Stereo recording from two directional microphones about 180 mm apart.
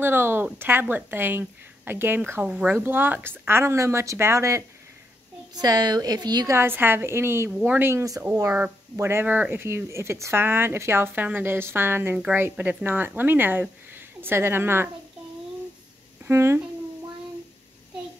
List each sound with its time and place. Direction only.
0.0 s a sound: 10° right (ahead or behind)
0.6 s speech: 10° right (ahead or behind)
16.3 s speech: 15° right (ahead or behind)